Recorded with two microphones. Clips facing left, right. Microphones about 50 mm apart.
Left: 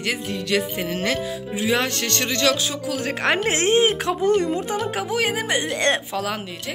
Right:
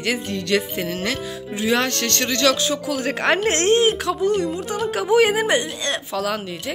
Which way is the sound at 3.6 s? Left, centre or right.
Centre.